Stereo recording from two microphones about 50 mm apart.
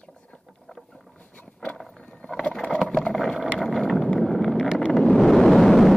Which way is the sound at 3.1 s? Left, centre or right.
Centre.